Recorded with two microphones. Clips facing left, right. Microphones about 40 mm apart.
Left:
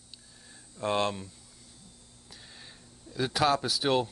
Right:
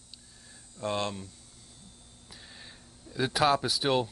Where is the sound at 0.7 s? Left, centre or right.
Centre.